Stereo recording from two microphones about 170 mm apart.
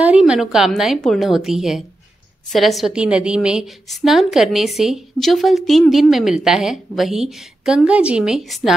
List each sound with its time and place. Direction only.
0.0 s a woman's voice: 5° right (ahead or behind)